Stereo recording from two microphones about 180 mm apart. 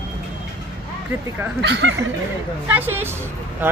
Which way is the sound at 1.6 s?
80° right.